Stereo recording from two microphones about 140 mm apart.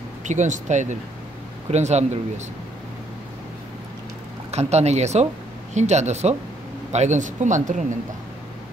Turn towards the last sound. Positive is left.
turn(degrees=-60)  # may be behind; listen again after turning